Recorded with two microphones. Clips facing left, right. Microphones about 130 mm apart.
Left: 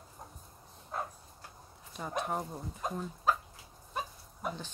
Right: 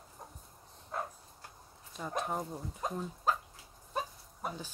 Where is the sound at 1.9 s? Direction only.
5° left (ahead or behind).